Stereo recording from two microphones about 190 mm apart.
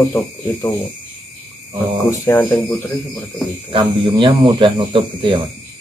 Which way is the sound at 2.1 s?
15° left (ahead or behind).